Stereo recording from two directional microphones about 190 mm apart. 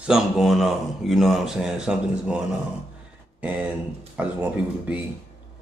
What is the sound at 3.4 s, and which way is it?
Speech, 10° right (ahead or behind).